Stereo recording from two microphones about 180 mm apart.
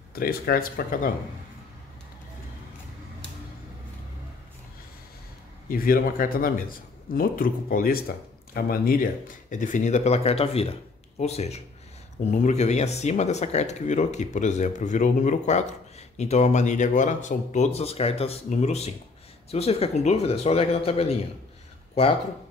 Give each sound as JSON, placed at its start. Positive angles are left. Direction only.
{"t": 0.1, "sound": "speech", "side_deg": 55}
{"t": 5.7, "sound": "speech", "side_deg": 50}